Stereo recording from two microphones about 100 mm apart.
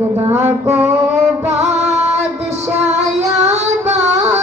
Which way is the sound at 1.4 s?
90° right.